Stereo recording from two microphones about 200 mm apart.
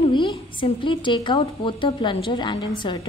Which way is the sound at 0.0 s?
25° left (ahead or behind).